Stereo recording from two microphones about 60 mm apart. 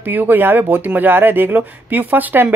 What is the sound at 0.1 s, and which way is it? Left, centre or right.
Speech, right.